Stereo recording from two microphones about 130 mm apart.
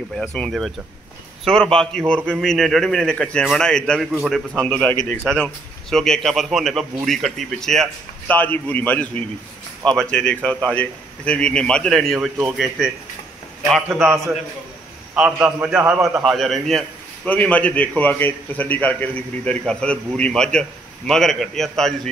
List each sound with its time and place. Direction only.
0.3 s a man's voice: 5° left (ahead or behind)
8.3 s a man's voice: 15° left (ahead or behind); by 12.9 s centre (ahead or behind)
15.1 s a man's voice: 10° right (ahead or behind)
16.3 s a man's voice: centre (ahead or behind)